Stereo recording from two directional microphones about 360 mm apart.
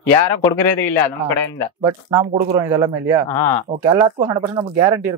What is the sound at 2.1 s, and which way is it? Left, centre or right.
Speech, centre.